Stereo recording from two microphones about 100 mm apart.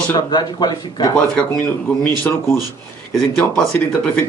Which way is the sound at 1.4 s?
20° left (ahead or behind).